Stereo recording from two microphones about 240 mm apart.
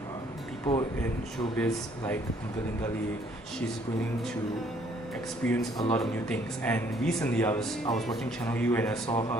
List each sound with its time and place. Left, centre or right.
0.7 s speech: left
1.0 s speech: centre
5.5 s speech: centre
9.1 s speech: centre